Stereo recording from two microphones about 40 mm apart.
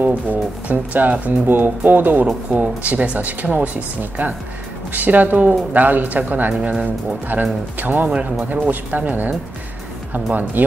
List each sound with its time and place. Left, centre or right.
0.0 s speech: right
1.4 s speech: right
2.5 s speech: right
3.2 s speech: right
7.3 s speech: right